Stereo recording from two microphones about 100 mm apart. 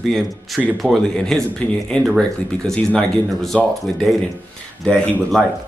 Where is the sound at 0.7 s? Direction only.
Centre (ahead or behind).